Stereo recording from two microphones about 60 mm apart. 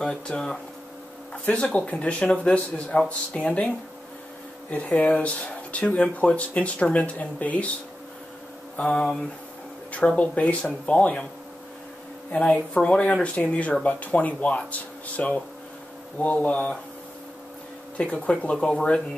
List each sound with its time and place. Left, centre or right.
0.0 s speech: centre
1.4 s speech: left
4.6 s speech: left
8.7 s speech: centre
12.3 s speech: centre
17.9 s speech: centre